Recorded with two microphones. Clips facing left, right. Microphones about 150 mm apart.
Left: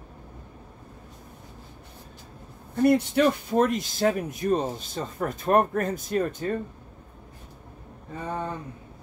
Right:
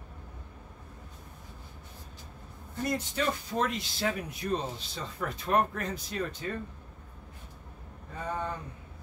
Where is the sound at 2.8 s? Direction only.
65° left (ahead or behind).